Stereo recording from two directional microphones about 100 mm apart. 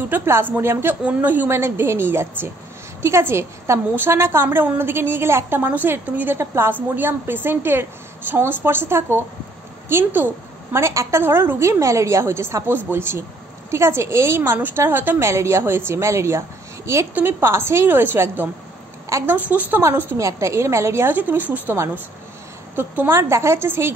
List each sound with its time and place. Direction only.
0.1 s a woman's voice: 25° right (ahead or behind)
19.3 s a woman's voice: 15° right (ahead or behind)